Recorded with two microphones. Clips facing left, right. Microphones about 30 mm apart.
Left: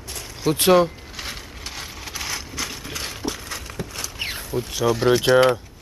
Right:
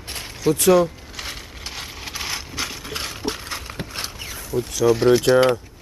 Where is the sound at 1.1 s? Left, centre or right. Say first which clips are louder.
Even; centre.